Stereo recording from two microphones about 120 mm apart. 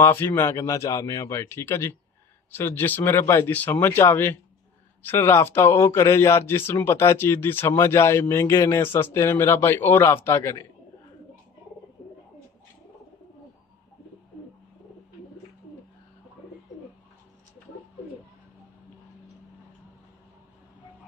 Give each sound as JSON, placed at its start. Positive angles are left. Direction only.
{"t": 0.0, "sound": "speech", "side_deg": 20}